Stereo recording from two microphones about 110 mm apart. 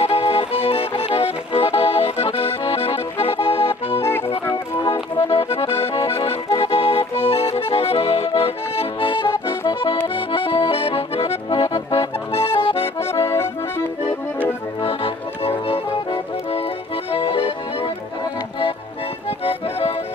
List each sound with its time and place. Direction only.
0.0 s music: 65° left (ahead or behind)
5.3 s accordion: 60° left (ahead or behind)
13.1 s accordion: 25° left (ahead or behind)
14.8 s music: 55° left (ahead or behind)
17.1 s accordion: 55° left (ahead or behind)